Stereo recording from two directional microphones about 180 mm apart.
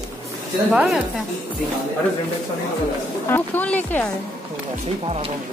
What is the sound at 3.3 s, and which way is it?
Speech, 10° left (ahead or behind).